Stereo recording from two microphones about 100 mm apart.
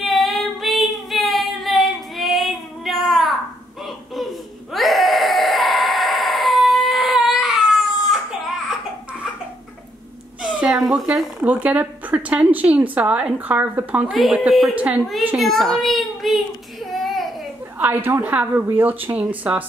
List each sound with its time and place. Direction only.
0.0 s child singing: centre (ahead or behind)
4.7 s a sound: centre (ahead or behind)
10.4 s speech: 5° right (ahead or behind)
14.1 s a child's voice: centre (ahead or behind)
17.0 s baby cry: centre (ahead or behind)
17.7 s speech: 20° right (ahead or behind)